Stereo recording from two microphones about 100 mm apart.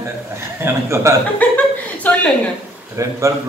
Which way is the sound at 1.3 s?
15° left (ahead or behind).